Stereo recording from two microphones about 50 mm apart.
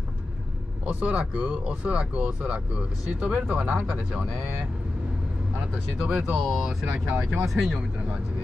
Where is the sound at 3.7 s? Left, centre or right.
Right.